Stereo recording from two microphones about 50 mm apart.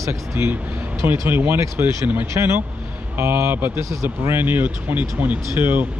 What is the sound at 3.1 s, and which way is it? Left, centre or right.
Speech, right.